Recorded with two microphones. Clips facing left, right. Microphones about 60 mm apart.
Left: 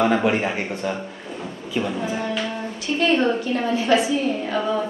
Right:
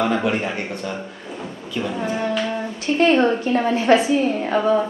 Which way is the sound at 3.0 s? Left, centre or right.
Right.